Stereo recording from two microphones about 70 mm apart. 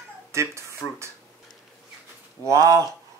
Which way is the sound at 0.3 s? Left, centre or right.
Right.